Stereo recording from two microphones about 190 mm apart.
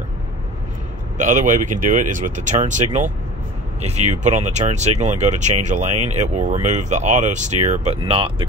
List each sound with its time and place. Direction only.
1.1 s speech: 40° right (ahead or behind)